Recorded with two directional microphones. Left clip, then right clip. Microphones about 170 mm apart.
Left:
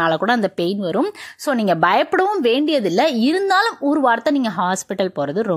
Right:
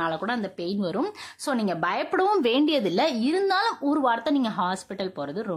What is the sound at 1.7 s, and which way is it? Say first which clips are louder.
Speech: left 14 dB; 40° left (ahead or behind).